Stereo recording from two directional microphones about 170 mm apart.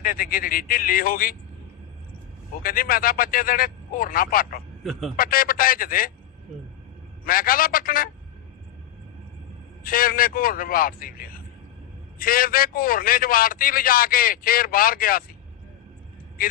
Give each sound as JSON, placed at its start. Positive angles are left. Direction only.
{"t": 0.0, "sound": "a man's voice", "side_deg": 55}
{"t": 2.6, "sound": "a man's voice", "side_deg": 55}
{"t": 7.2, "sound": "a man's voice", "side_deg": 55}
{"t": 9.8, "sound": "a man's voice", "side_deg": 55}
{"t": 16.4, "sound": "a man's voice", "side_deg": 55}